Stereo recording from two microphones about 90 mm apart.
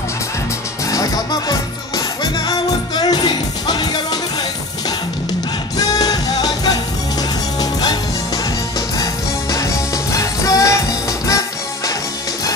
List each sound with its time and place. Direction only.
0.8 s music: 45° left (ahead or behind)
5.8 s music: 45° left (ahead or behind)
8.9 s music: 40° left (ahead or behind)